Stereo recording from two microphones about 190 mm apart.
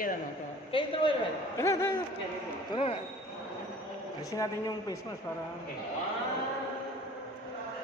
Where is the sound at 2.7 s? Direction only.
30° left (ahead or behind).